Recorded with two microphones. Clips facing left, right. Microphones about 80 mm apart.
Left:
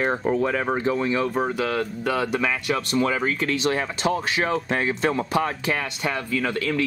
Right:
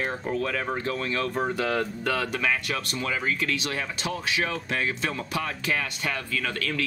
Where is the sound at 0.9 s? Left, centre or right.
Centre.